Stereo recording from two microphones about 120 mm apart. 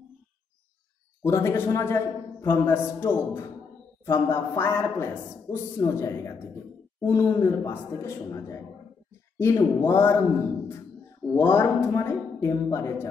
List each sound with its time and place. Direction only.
1.2 s speech: 25° left (ahead or behind)
11.3 s speech: 20° left (ahead or behind)